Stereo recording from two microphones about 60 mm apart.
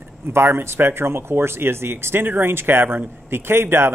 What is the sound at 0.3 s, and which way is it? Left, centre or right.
Speech, right.